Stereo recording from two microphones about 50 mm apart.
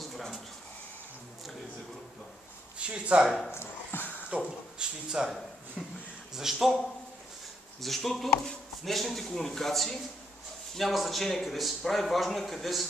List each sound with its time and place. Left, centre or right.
0.0 s a sound: centre
2.8 s speech: right
3.3 s a man's voice: centre
3.5 s dog: left
4.4 s speech: centre
5.8 s a sound: centre
6.3 s a man's voice: centre
7.8 s a man's voice: centre